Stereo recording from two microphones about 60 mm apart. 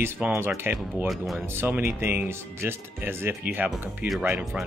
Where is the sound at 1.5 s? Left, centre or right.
Right.